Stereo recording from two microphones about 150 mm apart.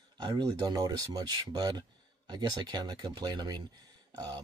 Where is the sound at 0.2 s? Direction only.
25° right (ahead or behind).